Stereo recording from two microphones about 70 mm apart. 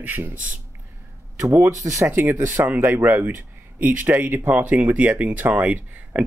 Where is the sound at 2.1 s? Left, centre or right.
Right.